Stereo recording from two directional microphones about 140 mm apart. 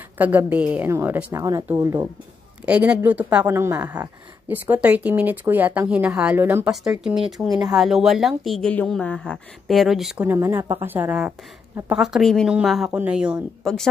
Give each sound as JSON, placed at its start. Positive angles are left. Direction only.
{"t": 0.2, "sound": "a woman's voice", "side_deg": -10}
{"t": 2.6, "sound": "a woman's voice", "side_deg": -10}
{"t": 10.2, "sound": "speech", "side_deg": -20}